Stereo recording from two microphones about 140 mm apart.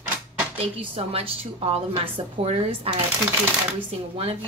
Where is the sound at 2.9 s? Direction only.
45° right (ahead or behind).